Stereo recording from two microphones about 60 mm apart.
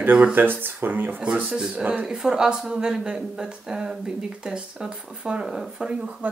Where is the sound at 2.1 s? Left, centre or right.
Centre.